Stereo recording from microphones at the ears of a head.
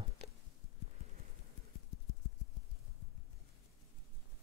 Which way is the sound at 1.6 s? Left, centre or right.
Left.